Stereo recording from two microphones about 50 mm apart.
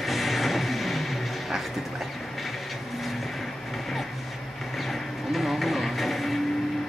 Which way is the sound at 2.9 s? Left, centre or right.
Centre.